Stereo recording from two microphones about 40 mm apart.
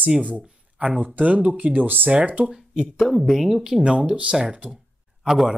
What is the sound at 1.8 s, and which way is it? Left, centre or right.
Speech, right.